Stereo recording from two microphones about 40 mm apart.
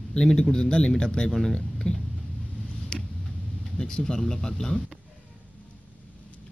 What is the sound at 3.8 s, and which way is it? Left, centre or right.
Speech, centre.